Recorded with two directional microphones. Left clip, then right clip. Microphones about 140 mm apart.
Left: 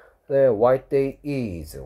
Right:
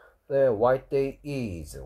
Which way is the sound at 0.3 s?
20° left (ahead or behind).